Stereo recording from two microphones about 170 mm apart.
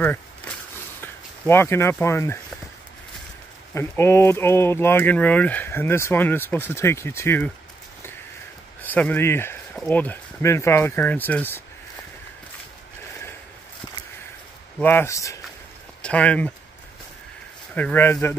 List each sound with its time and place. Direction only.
0.0 s a sound: 10° left (ahead or behind)
1.0 s speech: 15° left (ahead or behind)
3.7 s speech: 15° left (ahead or behind)
8.8 s speech: 10° left (ahead or behind)
14.8 s speech: 10° left (ahead or behind)
16.0 s speech: 5° left (ahead or behind)
17.7 s speech: 10° left (ahead or behind)